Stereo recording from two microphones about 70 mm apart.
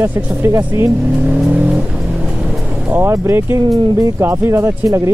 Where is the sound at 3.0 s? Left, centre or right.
Right.